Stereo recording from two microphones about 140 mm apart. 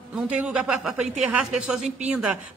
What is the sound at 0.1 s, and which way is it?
Speech, 5° right (ahead or behind).